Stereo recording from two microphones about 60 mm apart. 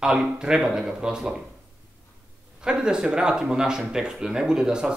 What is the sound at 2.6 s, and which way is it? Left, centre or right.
Speech, centre.